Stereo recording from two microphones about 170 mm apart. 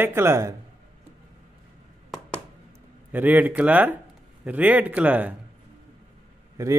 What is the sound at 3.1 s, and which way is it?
Speech, 10° right (ahead or behind).